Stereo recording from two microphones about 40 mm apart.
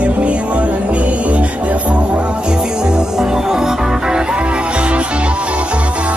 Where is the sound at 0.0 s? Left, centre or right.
Right.